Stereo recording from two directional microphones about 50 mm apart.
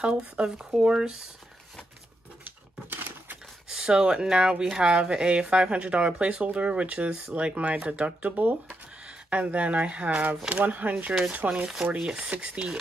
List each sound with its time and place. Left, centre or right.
0.4 s speech: centre
2.4 s dishes: right
3.6 s speech: centre